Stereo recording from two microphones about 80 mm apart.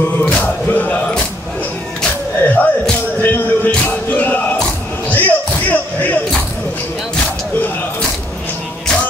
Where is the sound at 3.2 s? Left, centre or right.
Left.